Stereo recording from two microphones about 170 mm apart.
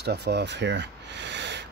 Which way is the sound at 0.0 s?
75° right (ahead or behind).